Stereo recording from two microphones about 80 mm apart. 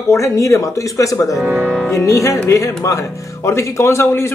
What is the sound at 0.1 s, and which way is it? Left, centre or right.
Speech, left.